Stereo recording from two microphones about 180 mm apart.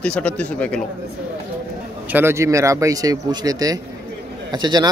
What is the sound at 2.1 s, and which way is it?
A man's voice, 15° right (ahead or behind).